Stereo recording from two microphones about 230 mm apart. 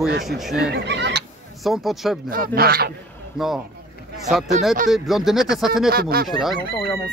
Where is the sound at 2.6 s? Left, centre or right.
Right.